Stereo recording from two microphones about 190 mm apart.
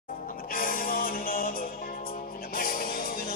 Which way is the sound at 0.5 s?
50° left (ahead or behind).